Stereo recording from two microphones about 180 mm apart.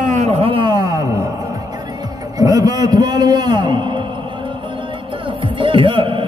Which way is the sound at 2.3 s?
20° right (ahead or behind).